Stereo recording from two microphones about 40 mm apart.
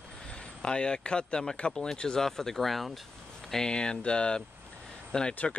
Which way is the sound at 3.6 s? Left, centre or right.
Left.